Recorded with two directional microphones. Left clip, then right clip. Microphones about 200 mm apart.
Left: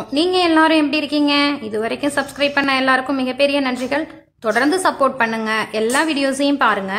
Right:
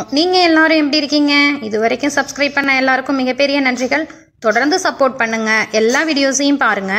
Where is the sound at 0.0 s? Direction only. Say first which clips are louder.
Right 4 dB; 20° right (ahead or behind).